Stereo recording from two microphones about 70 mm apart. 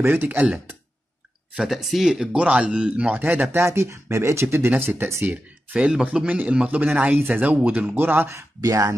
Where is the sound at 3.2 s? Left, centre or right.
Right.